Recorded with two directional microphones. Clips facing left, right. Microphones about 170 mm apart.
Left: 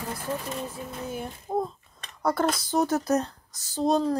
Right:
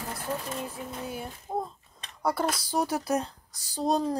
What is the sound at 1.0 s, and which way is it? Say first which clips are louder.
Speech: left 3 dB; 5° right (ahead or behind).